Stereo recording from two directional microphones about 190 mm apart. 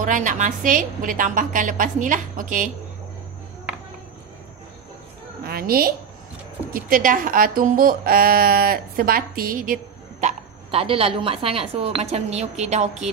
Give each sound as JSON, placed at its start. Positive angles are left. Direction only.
{"t": 0.0, "sound": "speech", "side_deg": -40}
{"t": 5.4, "sound": "a woman's voice", "side_deg": -55}
{"t": 10.2, "sound": "speech", "side_deg": -30}